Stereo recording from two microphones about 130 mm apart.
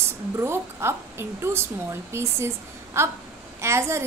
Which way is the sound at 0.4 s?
20° right (ahead or behind).